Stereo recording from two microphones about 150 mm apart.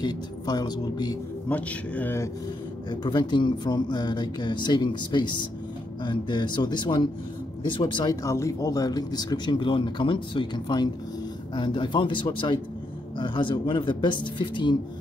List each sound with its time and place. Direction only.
0.0 s speech: 25° left (ahead or behind)
1.5 s a man's voice: 10° left (ahead or behind)
2.9 s speech: 30° left (ahead or behind)